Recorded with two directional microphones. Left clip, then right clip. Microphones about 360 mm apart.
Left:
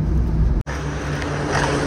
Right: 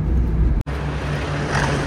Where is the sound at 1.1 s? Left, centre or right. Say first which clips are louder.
Left 1 dB; left.